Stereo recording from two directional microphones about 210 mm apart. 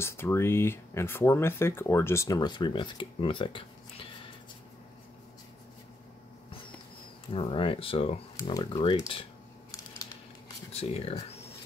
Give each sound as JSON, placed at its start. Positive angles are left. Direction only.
{"t": 0.0, "sound": "speech", "side_deg": 10}
{"t": 7.2, "sound": "speech", "side_deg": 25}